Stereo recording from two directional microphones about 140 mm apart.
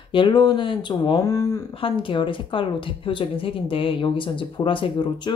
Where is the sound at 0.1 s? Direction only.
35° left (ahead or behind).